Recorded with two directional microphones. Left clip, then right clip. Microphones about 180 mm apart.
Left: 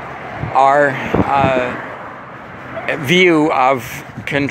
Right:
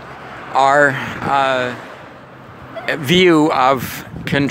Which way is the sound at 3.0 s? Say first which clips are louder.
Even; 65° right (ahead or behind).